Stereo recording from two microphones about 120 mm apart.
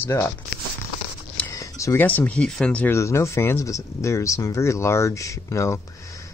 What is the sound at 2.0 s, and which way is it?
Speech, 15° left (ahead or behind).